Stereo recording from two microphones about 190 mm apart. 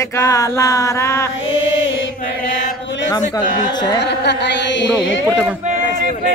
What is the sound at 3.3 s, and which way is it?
Speech, 20° left (ahead or behind).